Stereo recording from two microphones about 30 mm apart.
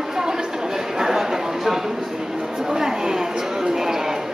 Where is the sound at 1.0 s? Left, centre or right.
Centre.